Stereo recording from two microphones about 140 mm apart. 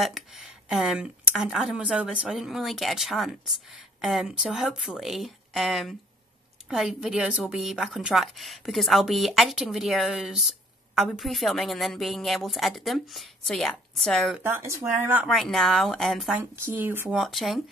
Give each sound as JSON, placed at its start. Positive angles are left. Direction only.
{"t": 0.0, "sound": "speech", "side_deg": 0}
{"t": 14.4, "sound": "speech", "side_deg": -15}
{"t": 15.2, "sound": "speech", "side_deg": 0}
{"t": 16.3, "sound": "speech", "side_deg": -15}
{"t": 17.1, "sound": "speech", "side_deg": 0}